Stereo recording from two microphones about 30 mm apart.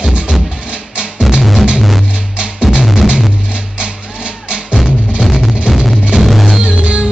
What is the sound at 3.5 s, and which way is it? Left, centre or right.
Music, right.